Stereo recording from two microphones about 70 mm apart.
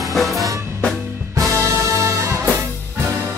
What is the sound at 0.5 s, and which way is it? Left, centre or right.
Music, right.